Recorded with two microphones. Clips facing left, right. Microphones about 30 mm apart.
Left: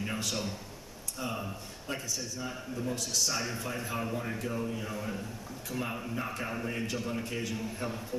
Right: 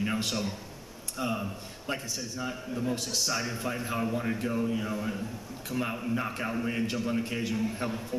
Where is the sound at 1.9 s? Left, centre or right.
Centre.